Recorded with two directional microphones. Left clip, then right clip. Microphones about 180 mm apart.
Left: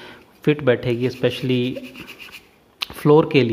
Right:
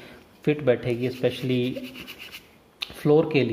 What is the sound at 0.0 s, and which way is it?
Speech, 35° left (ahead or behind).